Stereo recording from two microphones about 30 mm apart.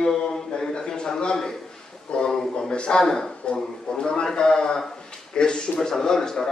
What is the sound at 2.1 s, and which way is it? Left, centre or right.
Speech, left.